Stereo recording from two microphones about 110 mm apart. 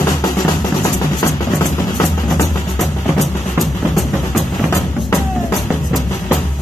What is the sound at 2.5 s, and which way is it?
Music, centre (ahead or behind).